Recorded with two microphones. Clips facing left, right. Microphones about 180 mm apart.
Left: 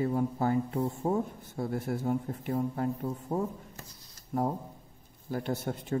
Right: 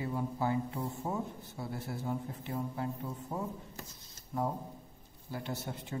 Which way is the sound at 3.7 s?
25° right (ahead or behind).